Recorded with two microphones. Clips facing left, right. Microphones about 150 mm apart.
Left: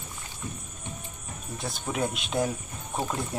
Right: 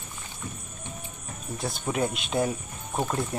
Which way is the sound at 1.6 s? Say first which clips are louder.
Right 2 dB; centre (ahead or behind).